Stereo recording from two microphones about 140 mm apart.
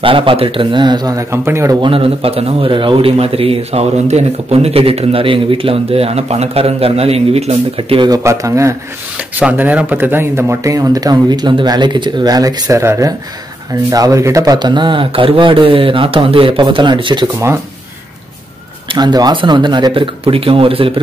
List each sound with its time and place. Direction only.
0.0 s speech: 40° right (ahead or behind); by 1.8 s 20° right (ahead or behind)
1.8 s a man's voice: 40° right (ahead or behind)
8.1 s speech: 20° right (ahead or behind)
9.3 s speech: 10° right (ahead or behind); by 17.4 s 35° right (ahead or behind)
18.9 s speech: 30° right (ahead or behind)